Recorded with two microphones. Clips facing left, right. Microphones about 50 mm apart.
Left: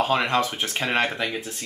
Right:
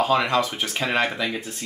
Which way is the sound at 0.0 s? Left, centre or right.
Left.